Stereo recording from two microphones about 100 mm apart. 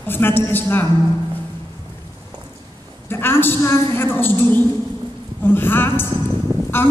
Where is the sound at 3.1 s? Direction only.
20° left (ahead or behind).